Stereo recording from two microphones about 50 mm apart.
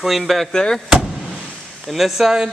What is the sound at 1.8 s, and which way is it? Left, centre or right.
Speech, centre.